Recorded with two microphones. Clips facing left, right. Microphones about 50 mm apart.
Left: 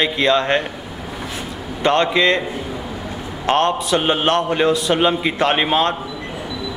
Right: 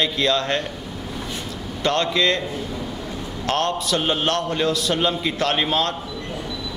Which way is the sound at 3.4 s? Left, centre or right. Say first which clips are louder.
Left 5 dB; left.